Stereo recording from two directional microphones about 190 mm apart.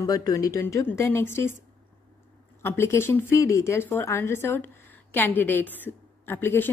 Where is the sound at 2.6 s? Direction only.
15° left (ahead or behind).